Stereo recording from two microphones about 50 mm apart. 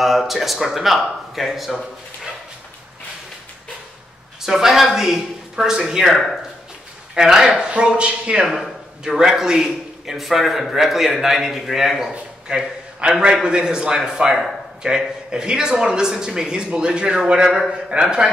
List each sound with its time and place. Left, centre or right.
0.0 s a man's voice: centre
4.4 s a man's voice: centre
8.5 s a man's voice: centre
12.1 s a man's voice: centre